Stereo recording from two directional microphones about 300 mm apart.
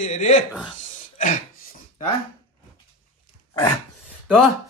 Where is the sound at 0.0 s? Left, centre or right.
Left.